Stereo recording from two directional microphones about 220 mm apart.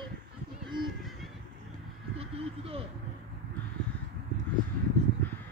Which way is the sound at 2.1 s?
25° right (ahead or behind).